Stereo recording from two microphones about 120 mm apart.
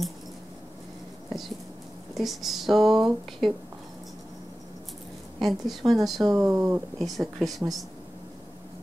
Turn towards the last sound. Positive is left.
turn(degrees=0)  # may be behind; listen again after turning